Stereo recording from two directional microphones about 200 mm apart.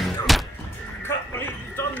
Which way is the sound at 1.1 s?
10° left (ahead or behind).